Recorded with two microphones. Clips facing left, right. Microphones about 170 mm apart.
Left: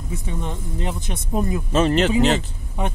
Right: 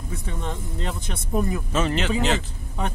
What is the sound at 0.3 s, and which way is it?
Speech, 15° left (ahead or behind).